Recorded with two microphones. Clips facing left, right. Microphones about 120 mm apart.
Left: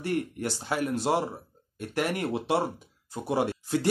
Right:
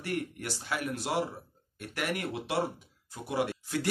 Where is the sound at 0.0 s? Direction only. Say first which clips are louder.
Left 5 dB; 30° left (ahead or behind).